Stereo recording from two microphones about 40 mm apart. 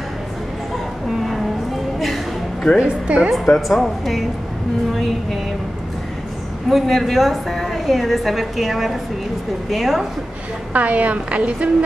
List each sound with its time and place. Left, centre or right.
1.0 s a sound: centre
2.8 s a woman's voice: right
3.4 s a woman's voice: centre
6.7 s a woman's voice: centre
10.7 s a woman's voice: right